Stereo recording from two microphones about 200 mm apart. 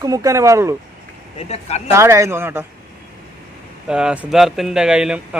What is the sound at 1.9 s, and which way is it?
Speech, 15° right (ahead or behind).